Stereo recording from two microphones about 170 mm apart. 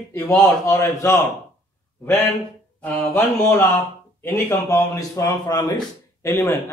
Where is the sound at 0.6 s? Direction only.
15° left (ahead or behind).